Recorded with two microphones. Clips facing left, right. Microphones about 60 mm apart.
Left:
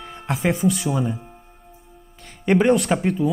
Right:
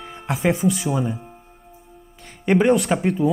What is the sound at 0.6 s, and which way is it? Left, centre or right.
Speech, centre.